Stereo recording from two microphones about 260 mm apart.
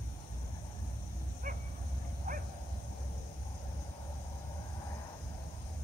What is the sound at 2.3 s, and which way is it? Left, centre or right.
Dog, right.